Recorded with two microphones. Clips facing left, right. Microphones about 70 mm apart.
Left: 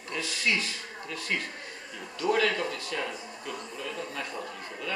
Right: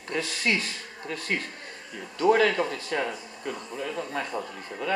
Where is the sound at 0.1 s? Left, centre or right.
Right.